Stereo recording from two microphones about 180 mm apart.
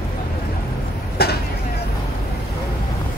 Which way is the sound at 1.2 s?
60° left (ahead or behind).